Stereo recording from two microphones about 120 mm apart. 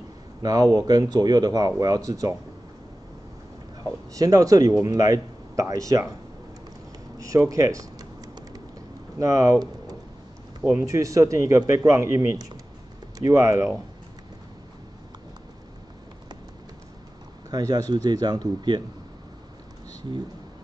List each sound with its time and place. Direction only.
0.4 s speech: 30° right (ahead or behind)
3.8 s speech: 30° right (ahead or behind)
7.2 s speech: 25° right (ahead or behind)
9.2 s speech: 25° right (ahead or behind)
17.5 s speech: 30° right (ahead or behind)